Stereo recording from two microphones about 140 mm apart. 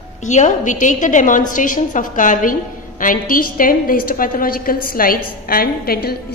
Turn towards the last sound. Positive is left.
turn(degrees=90)